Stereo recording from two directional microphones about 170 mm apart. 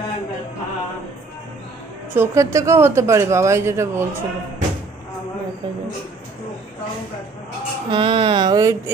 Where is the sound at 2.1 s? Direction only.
15° right (ahead or behind).